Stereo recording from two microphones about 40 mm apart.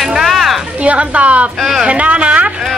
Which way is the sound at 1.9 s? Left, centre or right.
Right.